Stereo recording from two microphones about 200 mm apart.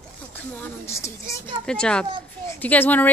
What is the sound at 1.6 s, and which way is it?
Speech, 5° left (ahead or behind).